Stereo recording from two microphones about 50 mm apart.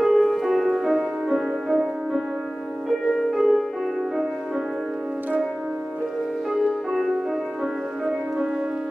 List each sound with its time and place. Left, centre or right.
0.0 s music: centre
6.9 s music: centre